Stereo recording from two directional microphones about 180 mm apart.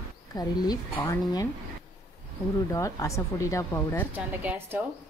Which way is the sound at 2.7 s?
15° left (ahead or behind).